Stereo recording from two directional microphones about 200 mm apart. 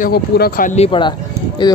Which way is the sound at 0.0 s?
45° left (ahead or behind).